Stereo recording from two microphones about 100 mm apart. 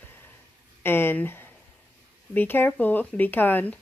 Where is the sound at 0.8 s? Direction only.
20° left (ahead or behind).